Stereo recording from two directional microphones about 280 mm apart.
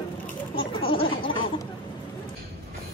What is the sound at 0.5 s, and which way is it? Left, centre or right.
Chatter, centre.